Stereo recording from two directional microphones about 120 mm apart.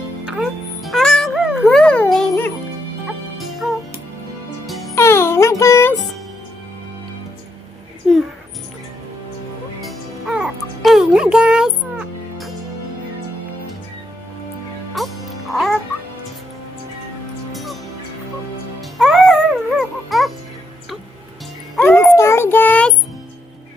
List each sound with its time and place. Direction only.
0.2 s music: 5° right (ahead or behind)
3.6 s music: 10° right (ahead or behind)
4.9 s music: 20° left (ahead or behind)
8.0 s music: centre (ahead or behind)
9.8 s music: centre (ahead or behind)
15.0 s music: centre (ahead or behind)
17.5 s music: centre (ahead or behind)
18.8 s music: centre (ahead or behind)
21.8 s music: 5° left (ahead or behind)
22.1 s music: 20° left (ahead or behind)